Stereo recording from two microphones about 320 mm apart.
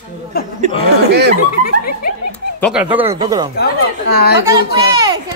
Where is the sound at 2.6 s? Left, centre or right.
Centre.